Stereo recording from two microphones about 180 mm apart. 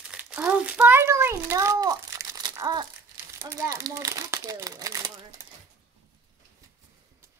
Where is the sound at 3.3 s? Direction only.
20° right (ahead or behind).